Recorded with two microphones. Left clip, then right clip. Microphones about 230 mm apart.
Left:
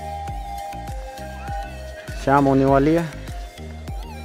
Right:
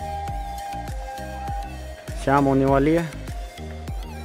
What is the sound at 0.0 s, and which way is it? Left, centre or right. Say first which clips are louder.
Music: even; centre.